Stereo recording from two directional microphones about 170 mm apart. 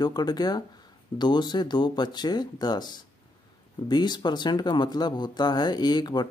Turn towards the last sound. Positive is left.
turn(degrees=25)  # may be behind; listen again after turning